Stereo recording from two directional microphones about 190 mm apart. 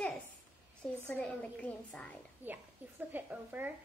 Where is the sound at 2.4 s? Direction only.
10° right (ahead or behind).